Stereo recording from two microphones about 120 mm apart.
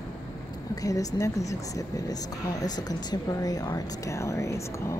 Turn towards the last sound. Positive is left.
turn(degrees=25)  # may be behind; listen again after turning